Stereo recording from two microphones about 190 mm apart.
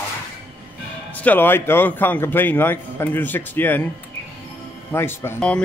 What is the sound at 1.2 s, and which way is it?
A man's voice, 10° left (ahead or behind).